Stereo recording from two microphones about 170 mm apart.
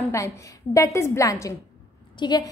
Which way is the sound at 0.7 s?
15° left (ahead or behind).